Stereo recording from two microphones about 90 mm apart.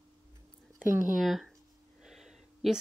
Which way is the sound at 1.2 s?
5° right (ahead or behind).